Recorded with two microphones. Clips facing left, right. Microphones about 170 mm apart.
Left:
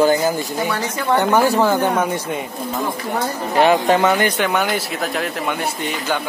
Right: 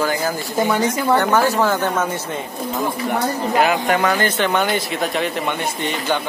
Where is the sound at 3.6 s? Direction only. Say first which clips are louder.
Left 4 dB; 30° left (ahead or behind).